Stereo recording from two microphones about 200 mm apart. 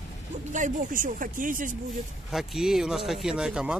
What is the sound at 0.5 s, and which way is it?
Speech, 40° right (ahead or behind).